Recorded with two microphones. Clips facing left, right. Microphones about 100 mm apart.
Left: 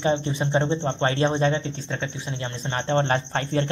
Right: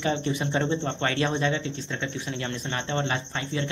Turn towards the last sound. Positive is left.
turn(degrees=45)  # may be behind; listen again after turning